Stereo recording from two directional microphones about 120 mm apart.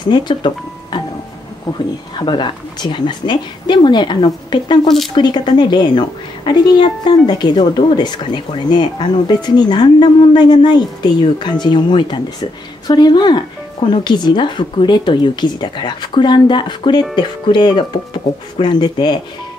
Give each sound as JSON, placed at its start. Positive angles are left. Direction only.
{"t": 0.1, "sound": "speech", "side_deg": 40}
{"t": 1.7, "sound": "speech", "side_deg": 40}
{"t": 4.8, "sound": "speech", "side_deg": 0}
{"t": 5.1, "sound": "speech", "side_deg": 40}